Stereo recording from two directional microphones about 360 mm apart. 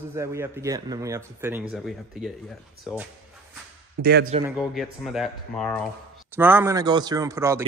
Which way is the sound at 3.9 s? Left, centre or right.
Right.